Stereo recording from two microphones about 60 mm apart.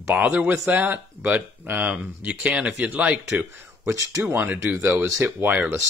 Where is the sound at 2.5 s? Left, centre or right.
Centre.